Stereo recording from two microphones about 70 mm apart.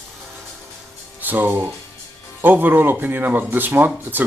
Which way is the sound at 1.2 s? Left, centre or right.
Right.